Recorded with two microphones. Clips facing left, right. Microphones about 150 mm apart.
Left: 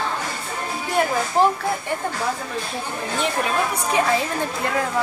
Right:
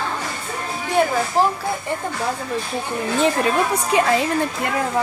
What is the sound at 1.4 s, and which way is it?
Speech, 30° right (ahead or behind).